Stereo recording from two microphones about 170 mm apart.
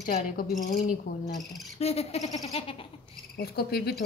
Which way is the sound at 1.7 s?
35° left (ahead or behind).